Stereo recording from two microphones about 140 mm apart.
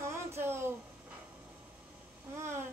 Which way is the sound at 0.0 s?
20° right (ahead or behind).